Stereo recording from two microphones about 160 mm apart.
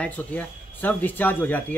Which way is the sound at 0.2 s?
10° left (ahead or behind).